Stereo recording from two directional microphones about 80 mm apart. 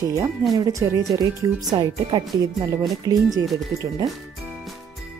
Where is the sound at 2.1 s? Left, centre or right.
Right.